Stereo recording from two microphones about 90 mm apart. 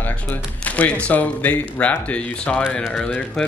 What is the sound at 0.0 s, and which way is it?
Speech, 20° left (ahead or behind).